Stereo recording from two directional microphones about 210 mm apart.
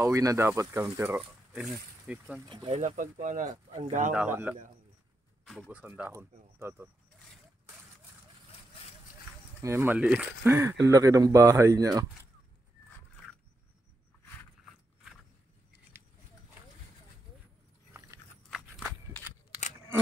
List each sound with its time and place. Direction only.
0.0 s speech: 15° right (ahead or behind)
2.4 s speech: 25° right (ahead or behind)
4.1 s speech: 5° right (ahead or behind)
9.6 s speech: 10° right (ahead or behind)